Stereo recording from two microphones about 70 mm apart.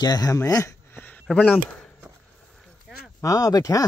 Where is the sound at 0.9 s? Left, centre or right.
Left.